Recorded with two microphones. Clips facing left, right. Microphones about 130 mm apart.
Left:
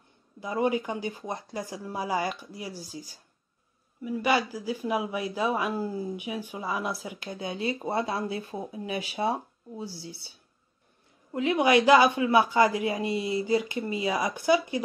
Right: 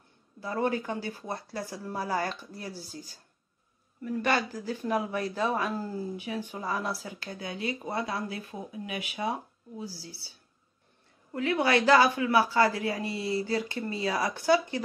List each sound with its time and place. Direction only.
0.4 s speech: 15° left (ahead or behind)
11.3 s speech: 20° left (ahead or behind)